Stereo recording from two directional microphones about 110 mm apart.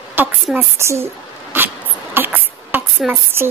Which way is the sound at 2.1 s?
20° right (ahead or behind).